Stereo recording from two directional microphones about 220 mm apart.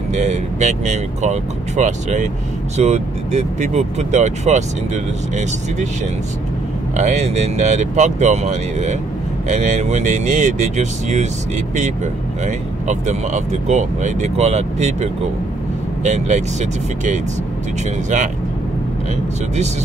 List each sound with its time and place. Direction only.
0.1 s speech: 30° right (ahead or behind)
7.0 s speech: 30° right (ahead or behind)